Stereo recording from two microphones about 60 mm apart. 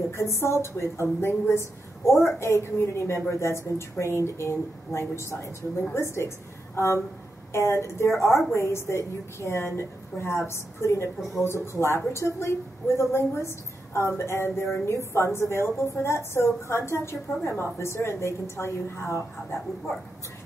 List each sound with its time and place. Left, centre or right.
0.1 s a woman's voice: left